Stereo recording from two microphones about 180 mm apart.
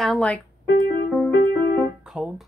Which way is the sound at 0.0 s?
5° left (ahead or behind).